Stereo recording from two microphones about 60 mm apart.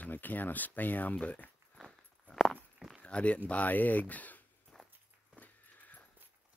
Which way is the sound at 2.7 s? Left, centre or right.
Centre.